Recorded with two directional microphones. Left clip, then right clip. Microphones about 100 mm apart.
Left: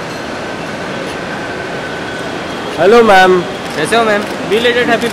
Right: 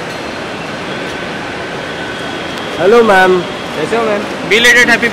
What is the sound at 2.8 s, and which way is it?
Speech, 10° left (ahead or behind).